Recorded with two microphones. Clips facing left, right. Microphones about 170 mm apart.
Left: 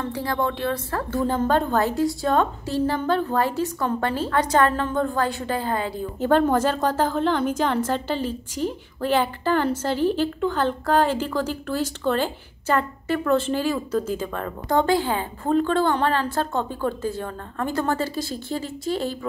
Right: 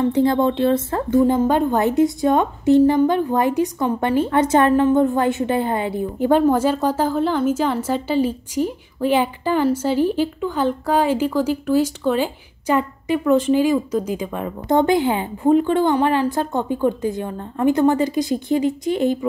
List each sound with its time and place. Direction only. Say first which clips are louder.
0.0 s a woman's voice: right 9 dB; 20° right (ahead or behind)
6.1 s a woman's voice: right 3 dB; 10° right (ahead or behind)